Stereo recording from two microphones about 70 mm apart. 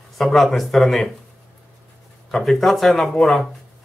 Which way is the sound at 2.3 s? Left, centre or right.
Centre.